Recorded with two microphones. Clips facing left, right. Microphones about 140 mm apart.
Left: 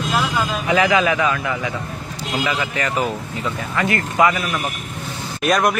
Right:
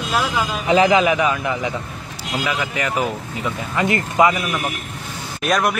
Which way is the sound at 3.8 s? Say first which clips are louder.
Right 1 dB; 20° right (ahead or behind).